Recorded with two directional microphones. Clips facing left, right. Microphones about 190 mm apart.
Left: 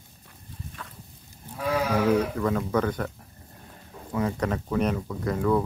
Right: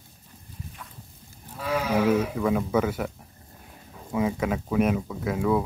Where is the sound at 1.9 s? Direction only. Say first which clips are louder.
Right 2 dB; 10° right (ahead or behind).